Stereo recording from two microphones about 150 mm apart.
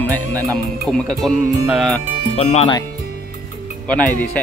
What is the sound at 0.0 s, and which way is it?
Music, 10° left (ahead or behind).